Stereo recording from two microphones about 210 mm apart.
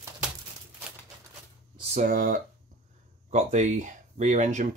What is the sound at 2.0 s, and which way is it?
Speech, 40° right (ahead or behind).